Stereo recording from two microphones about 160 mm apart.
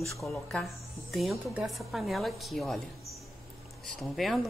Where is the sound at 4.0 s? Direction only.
Centre (ahead or behind).